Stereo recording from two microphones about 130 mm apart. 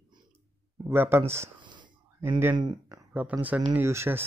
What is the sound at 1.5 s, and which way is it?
Wheeze, 35° right (ahead or behind).